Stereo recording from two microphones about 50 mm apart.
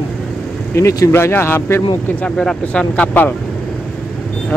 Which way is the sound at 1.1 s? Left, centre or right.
Left.